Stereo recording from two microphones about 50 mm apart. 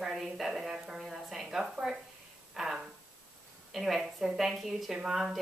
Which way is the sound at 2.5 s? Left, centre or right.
Centre.